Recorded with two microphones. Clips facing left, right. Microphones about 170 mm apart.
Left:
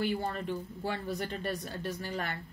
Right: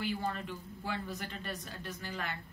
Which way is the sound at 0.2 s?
40° left (ahead or behind).